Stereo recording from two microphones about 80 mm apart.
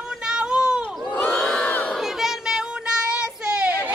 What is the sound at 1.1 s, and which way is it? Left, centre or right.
Crowd, left.